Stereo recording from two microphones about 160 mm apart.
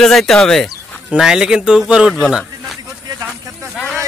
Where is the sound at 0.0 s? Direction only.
Centre (ahead or behind).